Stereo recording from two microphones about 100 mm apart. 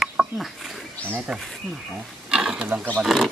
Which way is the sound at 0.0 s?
Centre (ahead or behind).